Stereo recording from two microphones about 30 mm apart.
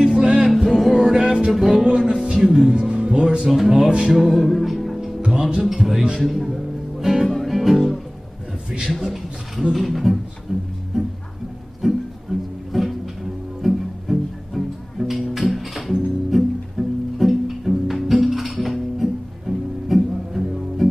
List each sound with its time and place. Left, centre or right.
0.2 s music: right
0.6 s music: centre
2.7 s music: right
3.4 s speech: centre
4.2 s music: centre
5.6 s speech: centre
6.1 s speech: centre
7.0 s music: centre
7.4 s music: centre
9.0 s speech: centre
11.8 s music: centre